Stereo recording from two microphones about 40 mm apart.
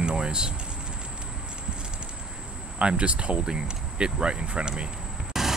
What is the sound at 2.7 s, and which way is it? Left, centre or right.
Speech, right.